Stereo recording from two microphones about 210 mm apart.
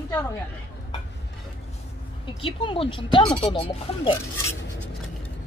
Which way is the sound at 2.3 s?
25° left (ahead or behind).